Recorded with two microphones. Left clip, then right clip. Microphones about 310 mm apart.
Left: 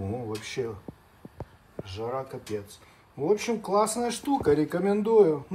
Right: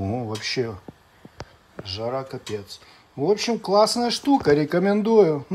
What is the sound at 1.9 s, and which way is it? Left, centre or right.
Speech, right.